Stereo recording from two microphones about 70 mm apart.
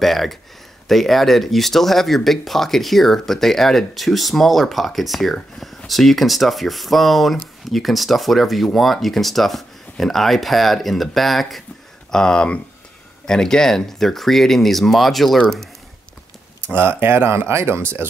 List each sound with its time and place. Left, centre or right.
0.0 s speech: centre
16.7 s speech: right